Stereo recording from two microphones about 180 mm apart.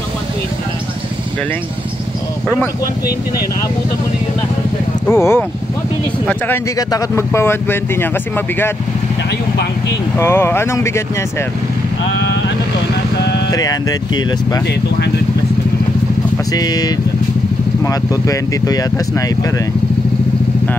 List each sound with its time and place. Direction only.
5.0 s speech: 15° left (ahead or behind)
10.1 s speech: 15° left (ahead or behind)
13.5 s speech: 20° left (ahead or behind)
16.5 s speech: 20° left (ahead or behind)